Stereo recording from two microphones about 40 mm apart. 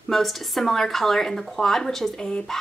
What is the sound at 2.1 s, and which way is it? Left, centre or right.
Speech, centre.